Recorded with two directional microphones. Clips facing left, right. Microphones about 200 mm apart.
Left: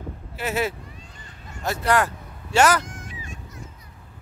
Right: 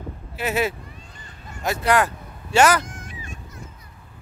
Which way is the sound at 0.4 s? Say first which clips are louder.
Right 2 dB; 15° right (ahead or behind).